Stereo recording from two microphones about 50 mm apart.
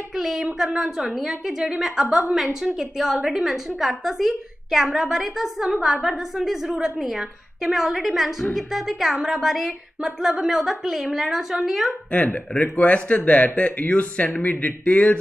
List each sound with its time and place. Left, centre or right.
0.1 s a woman's voice: centre
12.1 s speech: left